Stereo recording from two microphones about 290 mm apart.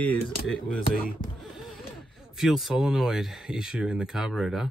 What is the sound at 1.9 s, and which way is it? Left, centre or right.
Speech, centre.